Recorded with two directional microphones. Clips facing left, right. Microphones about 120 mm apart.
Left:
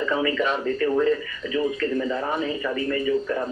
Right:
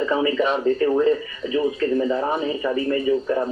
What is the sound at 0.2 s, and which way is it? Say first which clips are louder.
Speech: right 4 dB; 25° right (ahead or behind).